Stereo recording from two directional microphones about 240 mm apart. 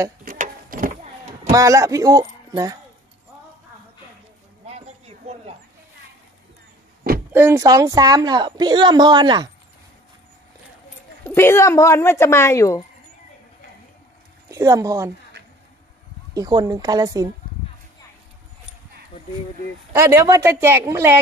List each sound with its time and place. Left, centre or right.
0.2 s a sound: right
1.5 s a woman's voice: centre
4.6 s a sound: right
7.3 s a woman's voice: centre
11.2 s speech: centre
14.5 s speech: centre
16.3 s a woman's voice: centre
19.9 s a woman's voice: centre